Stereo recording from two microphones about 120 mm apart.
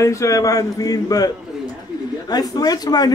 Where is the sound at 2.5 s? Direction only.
35° left (ahead or behind).